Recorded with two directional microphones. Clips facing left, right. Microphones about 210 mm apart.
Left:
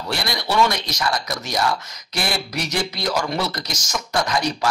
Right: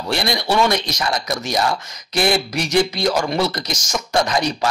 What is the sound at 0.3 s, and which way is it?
Speech, 20° right (ahead or behind).